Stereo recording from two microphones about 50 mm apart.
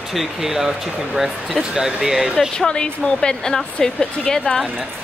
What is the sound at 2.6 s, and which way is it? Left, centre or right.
A woman's voice, centre.